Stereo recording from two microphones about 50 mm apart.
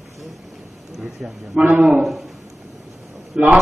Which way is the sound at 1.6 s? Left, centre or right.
Right.